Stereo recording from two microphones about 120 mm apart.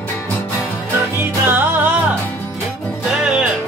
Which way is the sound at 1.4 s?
15° right (ahead or behind).